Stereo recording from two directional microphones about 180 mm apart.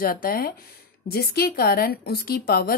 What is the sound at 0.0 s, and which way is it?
A woman's voice, 50° left (ahead or behind).